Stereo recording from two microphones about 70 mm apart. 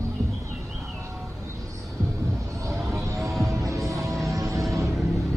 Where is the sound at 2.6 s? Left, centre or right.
Right.